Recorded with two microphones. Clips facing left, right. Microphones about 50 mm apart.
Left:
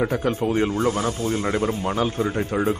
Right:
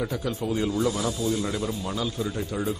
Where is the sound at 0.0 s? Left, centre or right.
Left.